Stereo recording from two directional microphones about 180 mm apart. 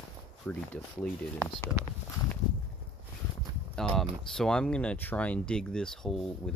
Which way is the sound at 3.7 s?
5° left (ahead or behind).